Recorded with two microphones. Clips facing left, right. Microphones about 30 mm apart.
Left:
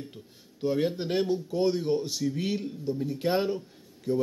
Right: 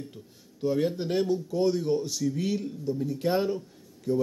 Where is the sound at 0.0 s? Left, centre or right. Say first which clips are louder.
Right 1 dB; left.